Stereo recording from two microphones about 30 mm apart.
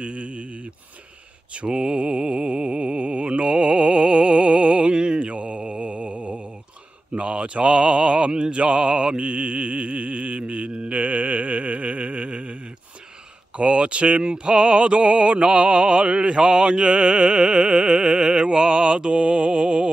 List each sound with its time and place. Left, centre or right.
0.0 s mantra: right
1.7 s mantra: right
4.9 s mantra: right
5.2 s mantra: right
7.2 s a sound: right
10.4 s mantra: right
10.9 s a sound: right
13.6 s music: right